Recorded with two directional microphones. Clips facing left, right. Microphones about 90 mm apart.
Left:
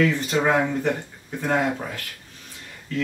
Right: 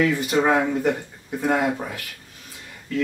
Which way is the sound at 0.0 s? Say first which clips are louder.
Right 1 dB; 10° right (ahead or behind).